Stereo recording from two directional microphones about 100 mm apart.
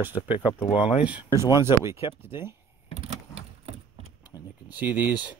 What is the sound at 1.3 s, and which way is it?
Speech, 30° right (ahead or behind).